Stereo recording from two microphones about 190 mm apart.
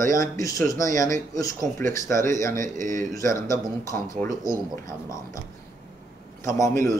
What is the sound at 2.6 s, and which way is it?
Speech, 45° right (ahead or behind).